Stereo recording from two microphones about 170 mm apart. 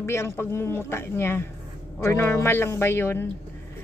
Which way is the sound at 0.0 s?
15° left (ahead or behind).